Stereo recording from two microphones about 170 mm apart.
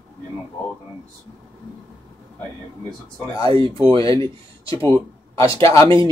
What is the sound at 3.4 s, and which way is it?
Speech, 30° right (ahead or behind).